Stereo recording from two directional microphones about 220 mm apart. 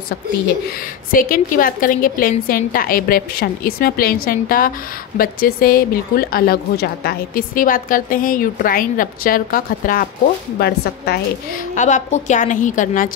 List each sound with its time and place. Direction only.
1.1 s speech: 40° left (ahead or behind)
11.7 s speech: 35° left (ahead or behind)